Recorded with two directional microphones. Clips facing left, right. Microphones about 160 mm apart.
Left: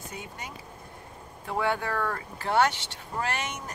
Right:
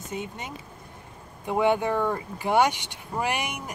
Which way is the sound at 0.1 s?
25° right (ahead or behind).